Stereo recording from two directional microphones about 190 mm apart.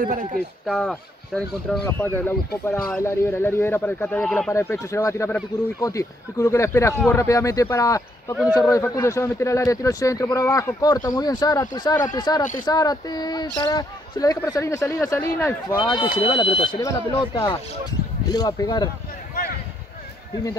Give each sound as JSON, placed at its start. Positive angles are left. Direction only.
{"t": 0.0, "sound": "speech", "side_deg": -45}
{"t": 0.7, "sound": "speech", "side_deg": 0}
{"t": 4.5, "sound": "speech", "side_deg": 15}
{"t": 16.3, "sound": "speech", "side_deg": 30}
{"t": 19.3, "sound": "a sound", "side_deg": 50}